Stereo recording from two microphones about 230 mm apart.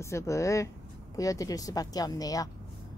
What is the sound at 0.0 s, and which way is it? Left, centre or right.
Speech, centre.